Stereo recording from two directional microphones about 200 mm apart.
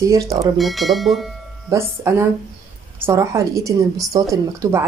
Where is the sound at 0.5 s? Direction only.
Centre (ahead or behind).